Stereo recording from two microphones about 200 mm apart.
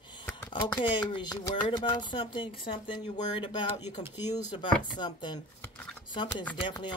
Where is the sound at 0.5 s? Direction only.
25° left (ahead or behind).